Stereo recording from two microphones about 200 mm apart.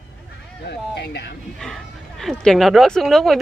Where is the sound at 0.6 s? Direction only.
55° left (ahead or behind).